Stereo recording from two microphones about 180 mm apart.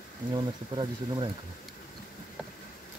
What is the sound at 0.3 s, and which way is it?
Speech, 25° right (ahead or behind).